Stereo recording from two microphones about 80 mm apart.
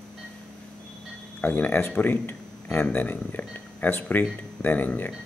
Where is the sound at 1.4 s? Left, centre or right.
Left.